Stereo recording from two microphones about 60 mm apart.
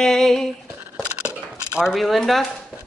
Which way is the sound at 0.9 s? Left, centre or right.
Centre.